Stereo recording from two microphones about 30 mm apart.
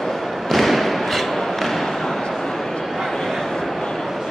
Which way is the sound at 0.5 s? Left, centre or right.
Centre.